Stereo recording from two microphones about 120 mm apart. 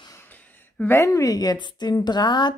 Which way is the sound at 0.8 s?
20° left (ahead or behind).